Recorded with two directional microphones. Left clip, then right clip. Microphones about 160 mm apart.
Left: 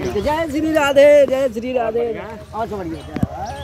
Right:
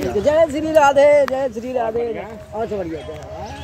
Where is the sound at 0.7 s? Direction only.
45° left (ahead or behind).